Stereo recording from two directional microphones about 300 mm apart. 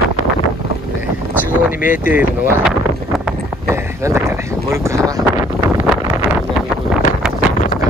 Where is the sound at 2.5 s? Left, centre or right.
Centre.